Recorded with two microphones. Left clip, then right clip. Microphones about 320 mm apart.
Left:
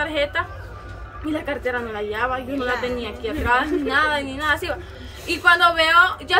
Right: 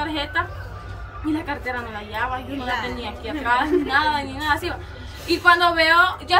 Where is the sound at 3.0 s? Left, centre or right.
Centre.